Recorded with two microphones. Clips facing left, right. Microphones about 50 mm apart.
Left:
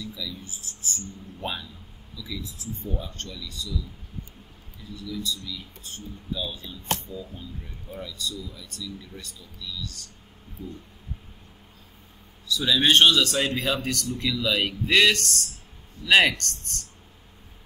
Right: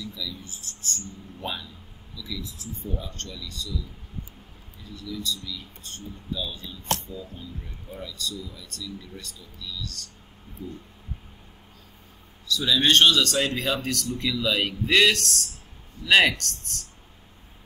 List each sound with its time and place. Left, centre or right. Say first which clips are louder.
0.0 s a man's voice: even; centre
4.9 s a man's voice: even; centre
12.4 s a man's voice: even; centre